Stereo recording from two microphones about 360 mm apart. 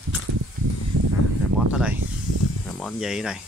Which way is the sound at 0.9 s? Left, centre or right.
Right.